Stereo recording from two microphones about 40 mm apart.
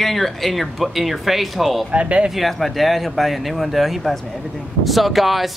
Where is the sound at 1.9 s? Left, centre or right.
Right.